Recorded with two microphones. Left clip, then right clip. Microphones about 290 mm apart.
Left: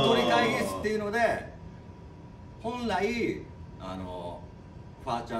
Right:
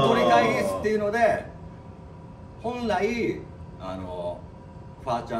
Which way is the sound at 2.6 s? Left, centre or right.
Centre.